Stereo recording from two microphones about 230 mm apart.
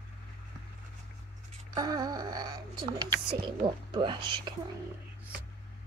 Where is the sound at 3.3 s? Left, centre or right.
Right.